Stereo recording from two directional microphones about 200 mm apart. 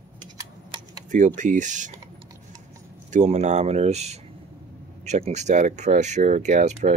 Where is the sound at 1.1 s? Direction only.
40° right (ahead or behind).